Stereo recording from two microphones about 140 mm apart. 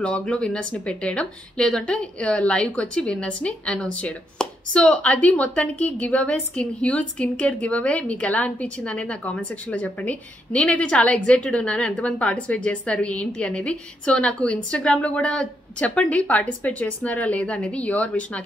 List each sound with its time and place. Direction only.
0.0 s speech: 5° left (ahead or behind)